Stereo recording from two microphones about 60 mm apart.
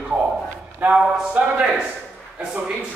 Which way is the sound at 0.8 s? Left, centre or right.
Right.